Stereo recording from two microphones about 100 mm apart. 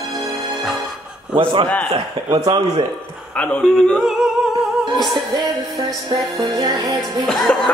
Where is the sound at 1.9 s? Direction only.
50° right (ahead or behind).